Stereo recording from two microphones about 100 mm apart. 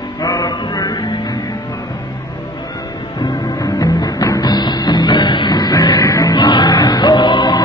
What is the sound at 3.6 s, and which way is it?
Music, 35° left (ahead or behind).